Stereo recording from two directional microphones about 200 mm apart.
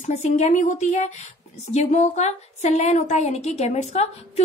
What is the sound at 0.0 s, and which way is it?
A woman's voice, 35° left (ahead or behind).